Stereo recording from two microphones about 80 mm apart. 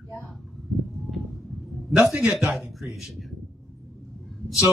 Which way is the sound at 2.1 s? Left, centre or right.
Centre.